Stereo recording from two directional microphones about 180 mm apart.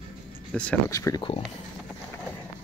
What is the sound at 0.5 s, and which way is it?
Speech, 5° left (ahead or behind).